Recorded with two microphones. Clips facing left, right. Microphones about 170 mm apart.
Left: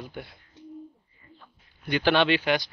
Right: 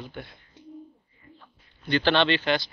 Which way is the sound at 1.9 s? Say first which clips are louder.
Even; 10° left (ahead or behind).